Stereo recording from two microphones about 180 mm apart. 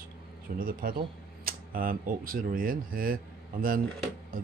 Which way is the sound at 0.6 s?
55° right (ahead or behind).